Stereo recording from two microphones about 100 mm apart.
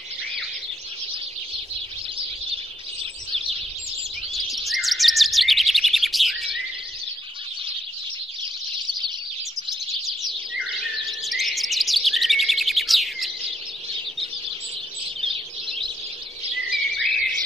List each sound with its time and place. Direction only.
2.1 s bird: 65° right (ahead or behind)
4.3 s chirp: centre (ahead or behind)
10.5 s chirp: 5° right (ahead or behind)
16.7 s bird: centre (ahead or behind)